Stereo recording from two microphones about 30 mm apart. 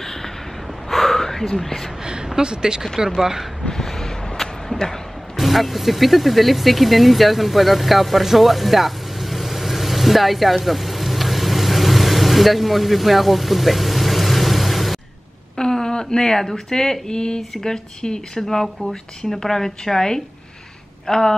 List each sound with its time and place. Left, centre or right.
0.0 s a sound: centre
0.8 s gasp: centre
1.6 s a woman's voice: centre
2.2 s speech: right
3.2 s speech: centre
3.7 s vehicle: centre
4.4 s a sound: centre
5.3 s vehicle: centre
15.5 s a sound: left
17.1 s speech: left
18.5 s a woman's voice: centre